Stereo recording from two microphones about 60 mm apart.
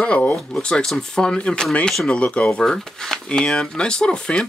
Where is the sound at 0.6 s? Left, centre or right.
Centre.